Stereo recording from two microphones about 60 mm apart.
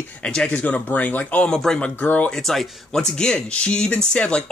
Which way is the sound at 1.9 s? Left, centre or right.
Left.